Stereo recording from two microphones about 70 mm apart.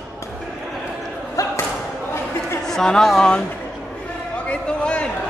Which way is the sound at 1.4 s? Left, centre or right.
Left.